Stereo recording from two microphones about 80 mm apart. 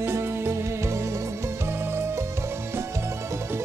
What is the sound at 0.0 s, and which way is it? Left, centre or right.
Music, right.